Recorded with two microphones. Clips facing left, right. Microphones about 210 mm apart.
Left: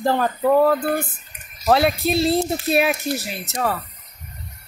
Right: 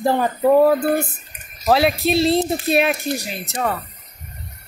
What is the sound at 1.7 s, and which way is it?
Speech, centre (ahead or behind).